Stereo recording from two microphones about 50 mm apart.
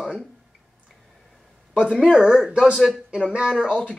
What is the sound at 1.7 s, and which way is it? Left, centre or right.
Speech, centre.